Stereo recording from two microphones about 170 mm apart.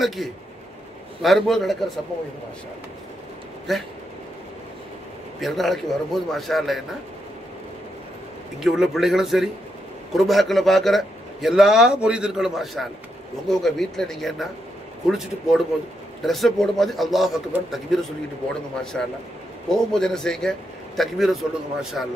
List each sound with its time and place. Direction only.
0.0 s a man's voice: centre (ahead or behind)
3.7 s a man's voice: centre (ahead or behind)
5.4 s a man's voice: centre (ahead or behind)
8.5 s a man's voice: 5° right (ahead or behind)